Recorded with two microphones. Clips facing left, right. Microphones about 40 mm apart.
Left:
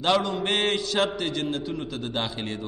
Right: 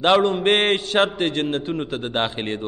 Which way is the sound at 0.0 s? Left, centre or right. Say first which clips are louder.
Right 7 dB; right.